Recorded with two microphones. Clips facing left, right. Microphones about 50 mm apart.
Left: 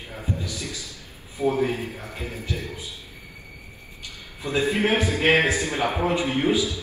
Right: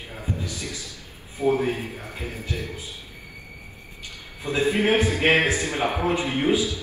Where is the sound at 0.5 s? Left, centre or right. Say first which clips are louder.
Even; right.